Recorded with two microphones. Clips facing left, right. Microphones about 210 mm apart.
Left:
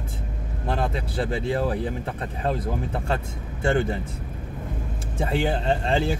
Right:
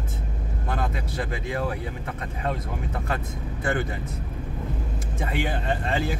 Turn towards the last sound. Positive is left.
turn(degrees=30)  # may be behind; listen again after turning